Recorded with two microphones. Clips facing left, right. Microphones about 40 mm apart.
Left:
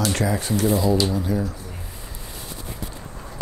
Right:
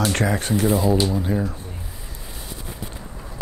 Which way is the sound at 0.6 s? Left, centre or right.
Right.